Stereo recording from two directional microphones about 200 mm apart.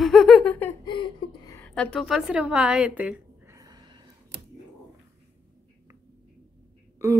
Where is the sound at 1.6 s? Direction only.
5° left (ahead or behind).